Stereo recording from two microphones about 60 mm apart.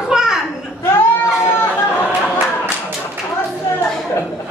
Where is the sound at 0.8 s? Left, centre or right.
Left.